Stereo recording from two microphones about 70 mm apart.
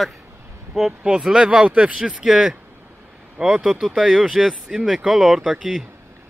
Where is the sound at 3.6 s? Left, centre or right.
Centre.